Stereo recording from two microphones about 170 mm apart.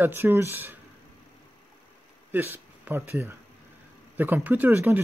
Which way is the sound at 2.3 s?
10° right (ahead or behind).